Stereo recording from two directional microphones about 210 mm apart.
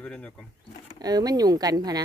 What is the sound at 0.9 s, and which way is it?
Speech, 20° right (ahead or behind).